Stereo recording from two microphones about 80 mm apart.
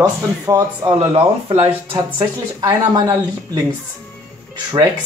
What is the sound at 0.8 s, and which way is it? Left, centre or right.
Speech, right.